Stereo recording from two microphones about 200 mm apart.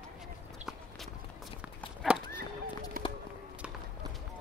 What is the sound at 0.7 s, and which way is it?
Walk, centre (ahead or behind).